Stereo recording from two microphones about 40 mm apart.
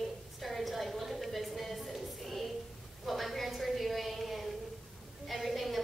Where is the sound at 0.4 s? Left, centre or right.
Centre.